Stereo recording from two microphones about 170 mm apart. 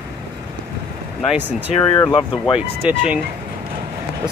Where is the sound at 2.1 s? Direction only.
30° left (ahead or behind).